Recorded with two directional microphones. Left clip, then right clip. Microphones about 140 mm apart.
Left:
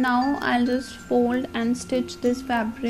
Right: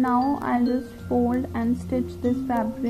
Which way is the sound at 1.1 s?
20° left (ahead or behind).